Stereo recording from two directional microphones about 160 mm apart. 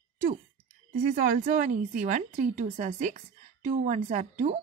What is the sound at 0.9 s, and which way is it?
Speech, 65° right (ahead or behind).